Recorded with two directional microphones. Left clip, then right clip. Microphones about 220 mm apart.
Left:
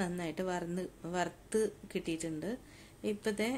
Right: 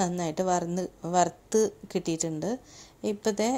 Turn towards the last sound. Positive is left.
turn(degrees=-25)  # may be behind; listen again after turning